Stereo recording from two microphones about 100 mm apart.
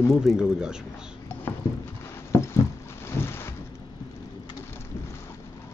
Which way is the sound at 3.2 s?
25° left (ahead or behind).